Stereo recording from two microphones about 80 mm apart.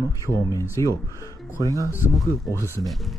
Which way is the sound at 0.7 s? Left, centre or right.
Left.